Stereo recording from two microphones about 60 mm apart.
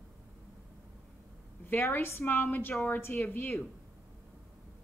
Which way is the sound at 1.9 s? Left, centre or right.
Left.